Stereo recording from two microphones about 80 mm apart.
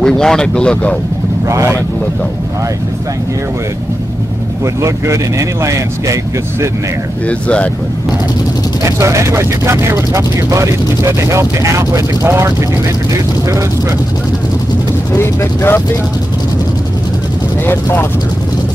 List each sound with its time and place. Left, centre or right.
0.0 s speech: centre
1.5 s speech: right
4.8 s speech: right
7.2 s speech: centre
8.8 s speech: right
15.1 s speech: left
17.6 s speech: left